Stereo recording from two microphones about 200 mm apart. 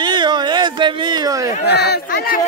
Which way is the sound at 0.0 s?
20° right (ahead or behind).